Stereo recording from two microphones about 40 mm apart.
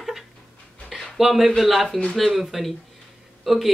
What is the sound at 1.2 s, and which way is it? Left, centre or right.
Speech, centre.